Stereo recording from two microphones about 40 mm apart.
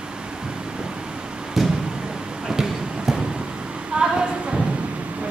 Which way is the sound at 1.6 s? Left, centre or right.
Centre.